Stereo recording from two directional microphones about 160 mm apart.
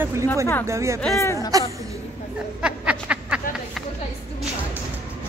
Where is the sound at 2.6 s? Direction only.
5° right (ahead or behind).